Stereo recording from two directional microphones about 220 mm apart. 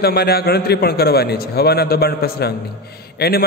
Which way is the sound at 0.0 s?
45° left (ahead or behind).